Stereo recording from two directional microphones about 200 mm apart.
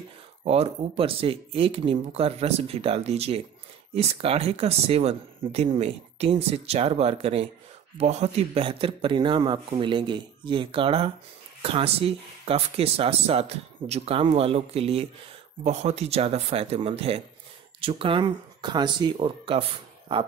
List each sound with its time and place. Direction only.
0.4 s speech: 30° right (ahead or behind)